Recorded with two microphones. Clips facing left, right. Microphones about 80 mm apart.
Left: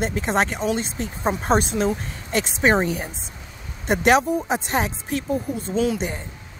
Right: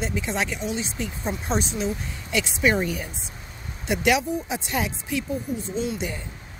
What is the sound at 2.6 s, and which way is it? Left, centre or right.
Speech, left.